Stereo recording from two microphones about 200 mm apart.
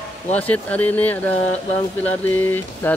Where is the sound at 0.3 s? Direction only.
5° left (ahead or behind).